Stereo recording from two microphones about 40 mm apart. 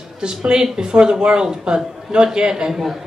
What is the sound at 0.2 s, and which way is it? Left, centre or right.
Speech, centre.